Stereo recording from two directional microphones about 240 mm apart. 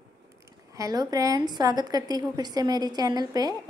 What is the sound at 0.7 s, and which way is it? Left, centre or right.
A woman's voice, centre.